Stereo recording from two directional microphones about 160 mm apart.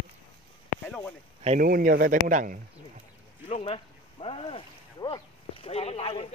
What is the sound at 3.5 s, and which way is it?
Boat, 40° left (ahead or behind).